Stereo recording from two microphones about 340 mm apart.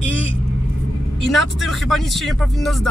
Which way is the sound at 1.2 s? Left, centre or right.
Centre.